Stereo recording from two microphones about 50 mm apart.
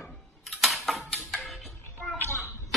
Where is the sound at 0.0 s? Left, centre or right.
Centre.